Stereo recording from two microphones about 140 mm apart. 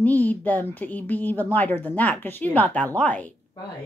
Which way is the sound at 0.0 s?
10° left (ahead or behind).